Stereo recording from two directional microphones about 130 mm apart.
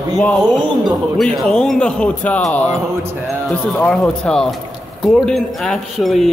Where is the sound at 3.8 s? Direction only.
10° left (ahead or behind).